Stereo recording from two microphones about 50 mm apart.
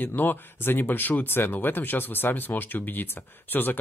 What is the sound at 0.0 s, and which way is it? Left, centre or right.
Speech, left.